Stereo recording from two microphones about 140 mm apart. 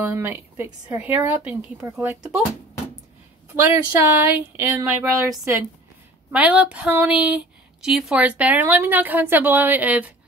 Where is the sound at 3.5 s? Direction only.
20° right (ahead or behind).